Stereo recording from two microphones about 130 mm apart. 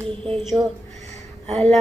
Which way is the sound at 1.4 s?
50° right (ahead or behind).